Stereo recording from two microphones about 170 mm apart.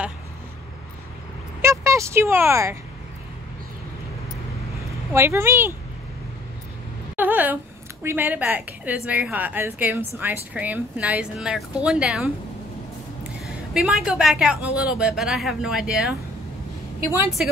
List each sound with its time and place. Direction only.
1.6 s speech: 15° right (ahead or behind)
5.1 s a woman's voice: 15° right (ahead or behind)
7.2 s a woman's voice: 10° right (ahead or behind)
13.7 s a woman's voice: 5° right (ahead or behind)